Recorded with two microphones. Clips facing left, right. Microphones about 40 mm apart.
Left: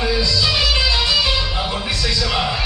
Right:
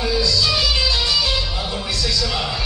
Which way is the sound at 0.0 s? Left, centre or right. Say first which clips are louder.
Left 1 dB; left.